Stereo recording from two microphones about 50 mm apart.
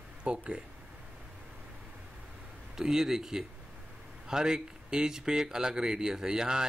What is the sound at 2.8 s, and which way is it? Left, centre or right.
Speech, centre.